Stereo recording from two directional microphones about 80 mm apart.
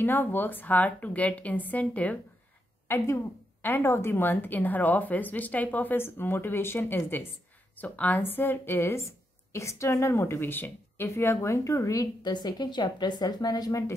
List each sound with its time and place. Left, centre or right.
0.0 s a woman's voice: left
3.6 s a woman's voice: left
12.2 s speech: left